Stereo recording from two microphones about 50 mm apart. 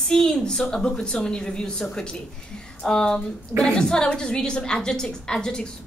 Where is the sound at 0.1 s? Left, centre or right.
Centre.